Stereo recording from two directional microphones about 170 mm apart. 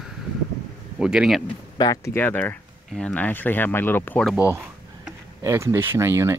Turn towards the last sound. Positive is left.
turn(degrees=-15)  # may be behind; listen again after turning